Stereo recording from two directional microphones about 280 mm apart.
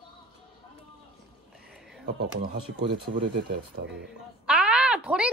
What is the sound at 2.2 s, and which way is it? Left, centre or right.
Speech, right.